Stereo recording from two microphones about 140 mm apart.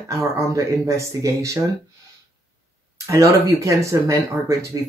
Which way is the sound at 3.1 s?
25° right (ahead or behind).